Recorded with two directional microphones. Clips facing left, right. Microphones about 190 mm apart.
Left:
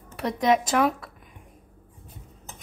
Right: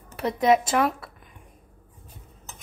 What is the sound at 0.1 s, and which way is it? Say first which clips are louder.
Speech: right 2 dB; 5° right (ahead or behind).